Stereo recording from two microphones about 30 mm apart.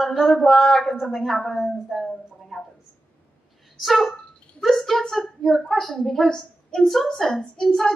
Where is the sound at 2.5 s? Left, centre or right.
Centre.